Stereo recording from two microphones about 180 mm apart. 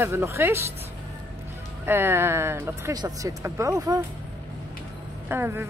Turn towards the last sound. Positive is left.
turn(degrees=-15)  # may be behind; listen again after turning